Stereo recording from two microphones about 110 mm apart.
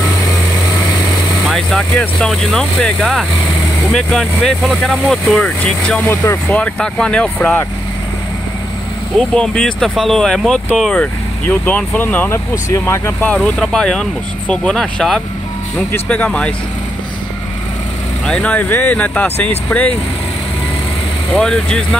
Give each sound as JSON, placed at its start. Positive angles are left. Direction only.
{"t": 1.4, "sound": "speech", "side_deg": 0}
{"t": 9.3, "sound": "speech", "side_deg": 5}
{"t": 12.6, "sound": "speech", "side_deg": 25}
{"t": 13.3, "sound": "speech", "side_deg": 5}
{"t": 18.2, "sound": "speech", "side_deg": 10}
{"t": 21.3, "sound": "speech", "side_deg": 5}